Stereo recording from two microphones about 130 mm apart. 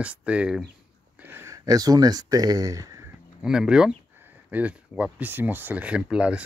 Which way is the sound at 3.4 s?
5° right (ahead or behind).